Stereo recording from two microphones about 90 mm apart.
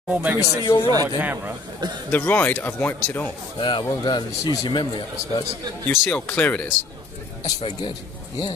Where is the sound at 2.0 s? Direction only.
20° left (ahead or behind).